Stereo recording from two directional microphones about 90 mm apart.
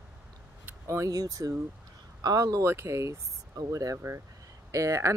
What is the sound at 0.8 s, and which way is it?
Speech, 35° right (ahead or behind).